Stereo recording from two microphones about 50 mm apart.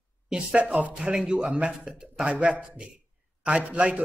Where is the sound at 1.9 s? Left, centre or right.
Centre.